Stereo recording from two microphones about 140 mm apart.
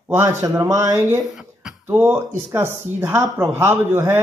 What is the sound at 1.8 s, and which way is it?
A man's voice, 10° right (ahead or behind).